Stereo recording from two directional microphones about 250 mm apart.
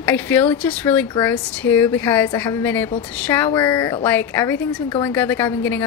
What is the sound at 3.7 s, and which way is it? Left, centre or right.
Speech, centre.